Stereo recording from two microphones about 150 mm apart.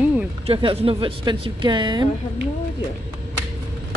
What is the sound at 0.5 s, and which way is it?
Speech, 35° right (ahead or behind).